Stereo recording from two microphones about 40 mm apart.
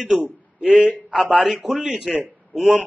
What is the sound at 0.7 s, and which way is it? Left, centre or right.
Speech, right.